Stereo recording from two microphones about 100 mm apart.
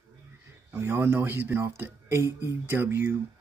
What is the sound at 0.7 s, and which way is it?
Speech, 20° right (ahead or behind).